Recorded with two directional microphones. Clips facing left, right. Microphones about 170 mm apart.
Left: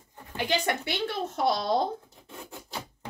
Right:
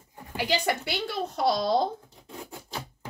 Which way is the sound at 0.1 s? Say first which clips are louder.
Right 1 dB; 10° right (ahead or behind).